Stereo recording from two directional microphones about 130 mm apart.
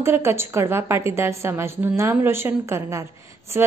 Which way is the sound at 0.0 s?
20° right (ahead or behind).